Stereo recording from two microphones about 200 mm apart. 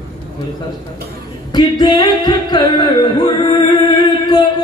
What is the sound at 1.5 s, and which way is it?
Music, 20° left (ahead or behind).